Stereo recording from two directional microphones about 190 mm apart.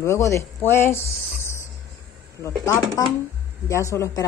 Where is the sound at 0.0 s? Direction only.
15° left (ahead or behind).